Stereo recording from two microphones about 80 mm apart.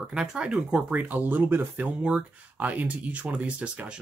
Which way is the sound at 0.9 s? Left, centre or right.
Right.